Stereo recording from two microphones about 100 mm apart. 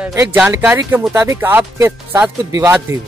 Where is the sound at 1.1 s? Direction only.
30° right (ahead or behind).